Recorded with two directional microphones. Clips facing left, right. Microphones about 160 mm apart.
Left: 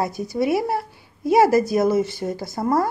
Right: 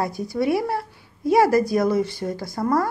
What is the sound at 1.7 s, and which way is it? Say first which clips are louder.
A woman's voice: left 1 dB; 20° left (ahead or behind).